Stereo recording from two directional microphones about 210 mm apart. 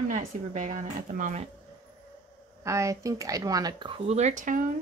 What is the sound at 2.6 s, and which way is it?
Speech, 15° right (ahead or behind).